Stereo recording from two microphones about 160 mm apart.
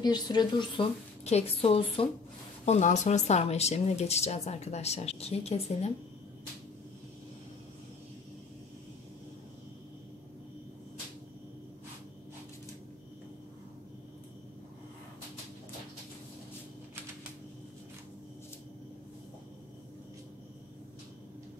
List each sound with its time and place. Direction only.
0.0 s speech: 25° left (ahead or behind)
1.2 s a woman's voice: 40° left (ahead or behind)
2.6 s speech: 45° left (ahead or behind)